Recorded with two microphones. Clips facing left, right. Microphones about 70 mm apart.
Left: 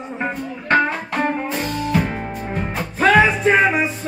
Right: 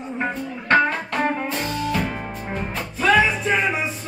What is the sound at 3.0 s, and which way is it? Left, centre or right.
Music, left.